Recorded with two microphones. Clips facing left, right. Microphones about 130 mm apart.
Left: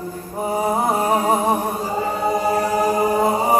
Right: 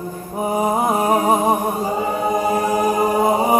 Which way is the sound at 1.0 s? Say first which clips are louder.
Right 2 dB; 15° right (ahead or behind).